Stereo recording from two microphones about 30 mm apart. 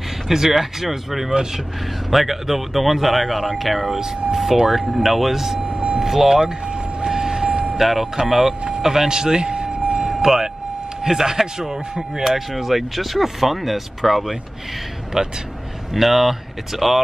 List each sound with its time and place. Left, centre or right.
0.3 s speech: centre
5.7 s vehicle: right
5.9 s speech: centre
6.4 s vehicle: right
7.1 s a sound: right
7.7 s speech: centre
8.8 s vehicle: centre
10.1 s vehicle: centre
11.0 s speech: right
12.2 s speech: centre
15.2 s speech: centre
15.9 s speech: centre